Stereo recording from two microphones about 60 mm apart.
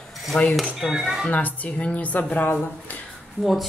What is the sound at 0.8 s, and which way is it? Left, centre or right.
Speech, centre.